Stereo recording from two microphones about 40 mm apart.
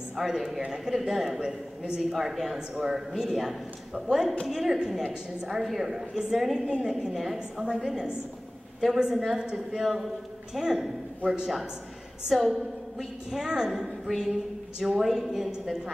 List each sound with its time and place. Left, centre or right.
0.1 s a woman's voice: centre
9.8 s a woman's voice: centre
12.3 s a woman's voice: centre
13.3 s a woman's voice: centre